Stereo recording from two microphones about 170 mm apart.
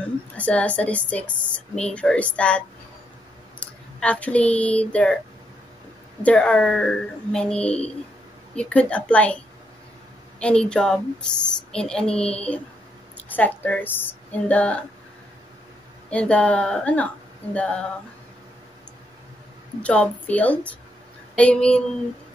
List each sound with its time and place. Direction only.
0.4 s speech: 10° left (ahead or behind)
6.2 s a child's voice: 5° left (ahead or behind)
10.4 s a child's voice: 5° left (ahead or behind)
16.1 s speech: 5° left (ahead or behind)
19.8 s a child's voice: 5° left (ahead or behind)